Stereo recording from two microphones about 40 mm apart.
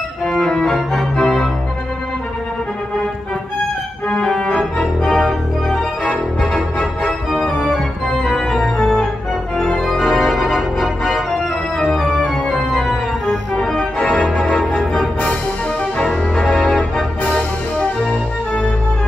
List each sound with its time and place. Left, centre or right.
0.3 s music: centre
1.1 s organ: centre
5.2 s organ: centre
12.7 s organ: centre